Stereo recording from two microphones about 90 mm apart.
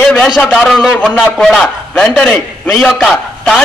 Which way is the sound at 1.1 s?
10° left (ahead or behind).